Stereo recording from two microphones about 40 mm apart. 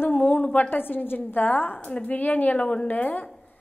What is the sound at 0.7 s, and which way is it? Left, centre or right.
A woman's voice, left.